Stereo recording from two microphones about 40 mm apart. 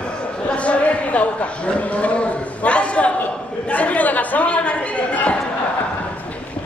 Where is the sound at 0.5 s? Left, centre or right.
Left.